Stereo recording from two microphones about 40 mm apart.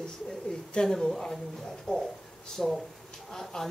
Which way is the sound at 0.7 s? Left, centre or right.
Centre.